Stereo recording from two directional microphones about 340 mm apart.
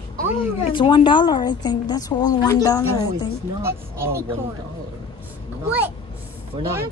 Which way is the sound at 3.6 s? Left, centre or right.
Centre.